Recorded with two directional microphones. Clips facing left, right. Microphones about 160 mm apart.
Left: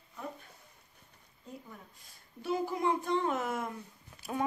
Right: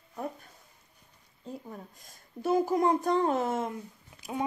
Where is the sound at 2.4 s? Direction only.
45° right (ahead or behind).